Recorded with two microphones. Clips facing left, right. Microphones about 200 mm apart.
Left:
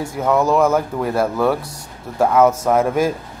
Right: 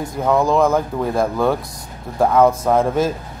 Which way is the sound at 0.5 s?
5° left (ahead or behind).